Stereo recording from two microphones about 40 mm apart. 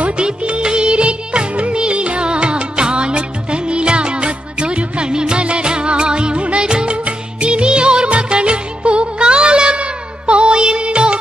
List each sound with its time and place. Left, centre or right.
0.2 s music of bollywood: right